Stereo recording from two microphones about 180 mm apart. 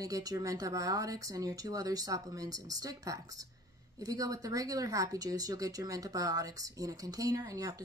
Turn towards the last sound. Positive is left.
turn(degrees=-20)  # may be behind; listen again after turning